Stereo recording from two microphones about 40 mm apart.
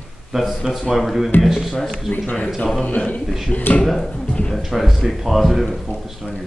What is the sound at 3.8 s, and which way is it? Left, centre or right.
Speech, centre.